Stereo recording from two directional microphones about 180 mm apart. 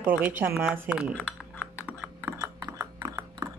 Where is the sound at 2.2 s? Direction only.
15° right (ahead or behind).